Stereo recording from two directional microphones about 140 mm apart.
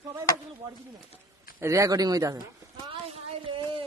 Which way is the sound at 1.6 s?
20° right (ahead or behind).